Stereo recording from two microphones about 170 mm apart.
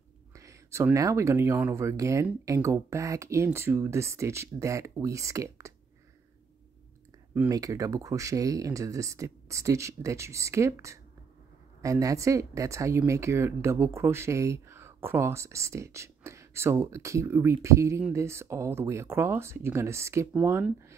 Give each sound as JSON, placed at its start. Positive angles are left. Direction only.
{"t": 0.3, "sound": "speech", "side_deg": -20}
{"t": 7.3, "sound": "speech", "side_deg": -20}